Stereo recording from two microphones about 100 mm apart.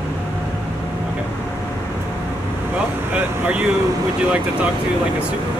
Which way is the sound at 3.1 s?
15° right (ahead or behind).